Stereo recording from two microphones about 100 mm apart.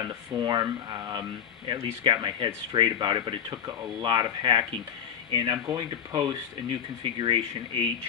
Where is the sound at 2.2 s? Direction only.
50° right (ahead or behind).